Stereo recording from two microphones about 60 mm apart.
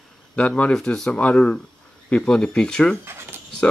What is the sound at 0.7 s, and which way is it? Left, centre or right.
Speech, centre.